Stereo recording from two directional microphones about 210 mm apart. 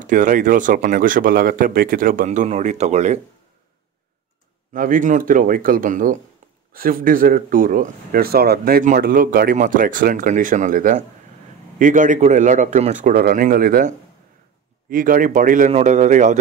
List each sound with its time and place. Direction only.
0.0 s speech: 40° right (ahead or behind)
4.7 s speech: 40° right (ahead or behind)